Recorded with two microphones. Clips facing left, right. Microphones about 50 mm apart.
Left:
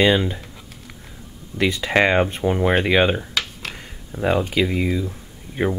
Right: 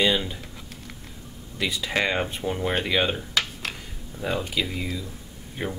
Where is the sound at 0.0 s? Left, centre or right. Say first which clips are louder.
Left 6 dB; left.